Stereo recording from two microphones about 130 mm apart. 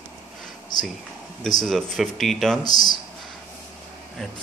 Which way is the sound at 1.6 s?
5° left (ahead or behind).